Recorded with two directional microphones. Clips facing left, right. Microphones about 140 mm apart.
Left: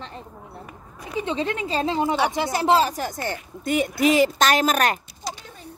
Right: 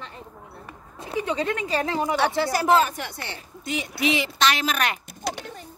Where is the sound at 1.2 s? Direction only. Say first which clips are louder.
Left 1 dB; 25° left (ahead or behind); by 4.9 s 45° left (ahead or behind).